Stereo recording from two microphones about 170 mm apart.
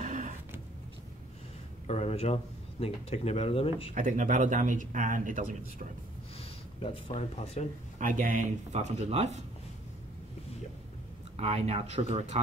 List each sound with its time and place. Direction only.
0.0 s a sound: 50° right (ahead or behind)
1.9 s speech: 40° left (ahead or behind)
3.9 s speech: 50° right (ahead or behind)
6.8 s speech: 35° left (ahead or behind)
8.0 s speech: 50° right (ahead or behind)
11.3 s speech: 35° right (ahead or behind)